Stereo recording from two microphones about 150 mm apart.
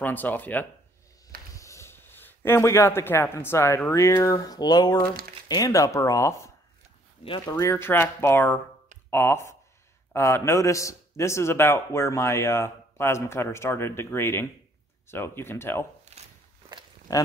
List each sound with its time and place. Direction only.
0.0 s a man's voice: 10° left (ahead or behind)
7.2 s a man's voice: 30° left (ahead or behind); by 15.8 s 15° left (ahead or behind)
16.1 s a sound: 45° right (ahead or behind)
17.1 s speech: 25° left (ahead or behind)